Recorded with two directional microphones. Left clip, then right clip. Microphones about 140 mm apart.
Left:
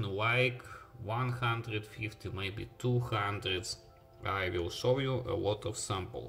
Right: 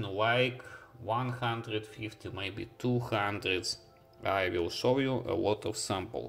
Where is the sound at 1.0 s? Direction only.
10° right (ahead or behind).